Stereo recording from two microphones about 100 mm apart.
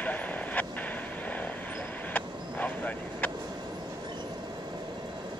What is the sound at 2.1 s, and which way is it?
Vehicle, 15° left (ahead or behind).